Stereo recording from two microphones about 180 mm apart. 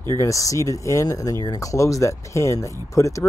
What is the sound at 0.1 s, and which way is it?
Speech, 15° left (ahead or behind).